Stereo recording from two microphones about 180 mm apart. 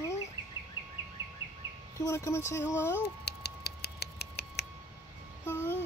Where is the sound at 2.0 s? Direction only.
15° left (ahead or behind).